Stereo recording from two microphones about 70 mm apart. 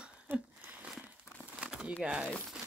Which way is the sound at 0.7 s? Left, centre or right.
Centre.